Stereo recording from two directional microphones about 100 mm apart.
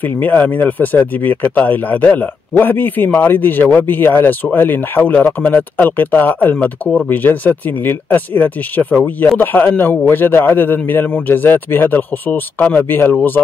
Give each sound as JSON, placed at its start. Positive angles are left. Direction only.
{"t": 0.0, "sound": "speech", "side_deg": 20}